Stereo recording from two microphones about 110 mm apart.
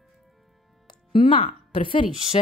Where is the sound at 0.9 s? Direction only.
50° left (ahead or behind).